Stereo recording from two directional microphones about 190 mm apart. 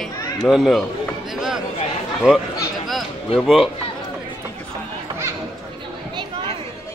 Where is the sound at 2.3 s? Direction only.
5° right (ahead or behind).